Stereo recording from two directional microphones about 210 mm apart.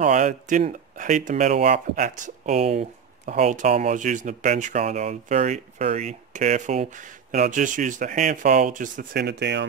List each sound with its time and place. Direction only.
0.0 s speech: 35° right (ahead or behind); by 9.7 s 55° right (ahead or behind)